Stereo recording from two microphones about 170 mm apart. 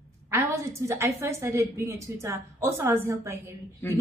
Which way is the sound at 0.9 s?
15° right (ahead or behind).